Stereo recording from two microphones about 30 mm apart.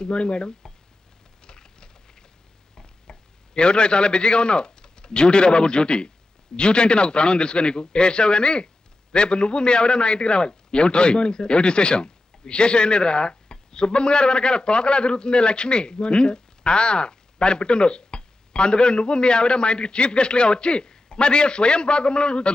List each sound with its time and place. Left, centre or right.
0.0 s a man's voice: left
1.4 s rain: left
2.7 s a sound: centre
3.5 s a man's voice: left